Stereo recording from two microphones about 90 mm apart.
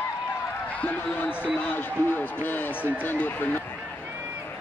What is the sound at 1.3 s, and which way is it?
Speech, 15° right (ahead or behind).